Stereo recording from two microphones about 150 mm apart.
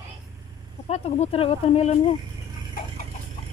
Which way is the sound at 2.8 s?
65° left (ahead or behind).